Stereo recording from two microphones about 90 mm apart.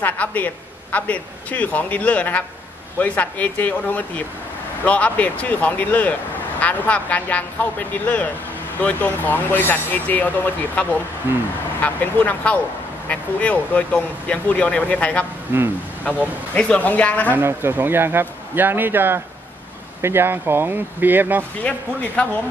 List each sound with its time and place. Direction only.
0.0 s speech: 20° left (ahead or behind)
15.5 s a man's voice: 20° right (ahead or behind)
16.5 s speech: 15° left (ahead or behind)
17.4 s a man's voice: 25° right (ahead or behind)
21.5 s speech: 15° left (ahead or behind)